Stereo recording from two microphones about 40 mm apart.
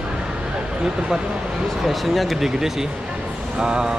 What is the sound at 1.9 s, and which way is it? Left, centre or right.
Speech, centre.